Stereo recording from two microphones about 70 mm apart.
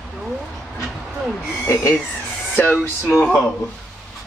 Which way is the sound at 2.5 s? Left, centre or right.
Left.